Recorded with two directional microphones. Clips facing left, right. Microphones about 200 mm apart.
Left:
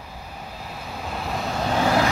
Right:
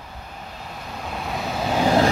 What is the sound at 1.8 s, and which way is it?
Vehicle, 20° right (ahead or behind).